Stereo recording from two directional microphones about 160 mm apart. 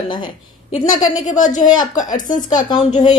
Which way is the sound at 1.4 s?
50° left (ahead or behind).